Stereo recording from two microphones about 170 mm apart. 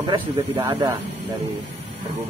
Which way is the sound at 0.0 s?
30° right (ahead or behind).